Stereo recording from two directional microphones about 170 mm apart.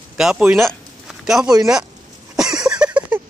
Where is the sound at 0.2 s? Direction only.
5° right (ahead or behind).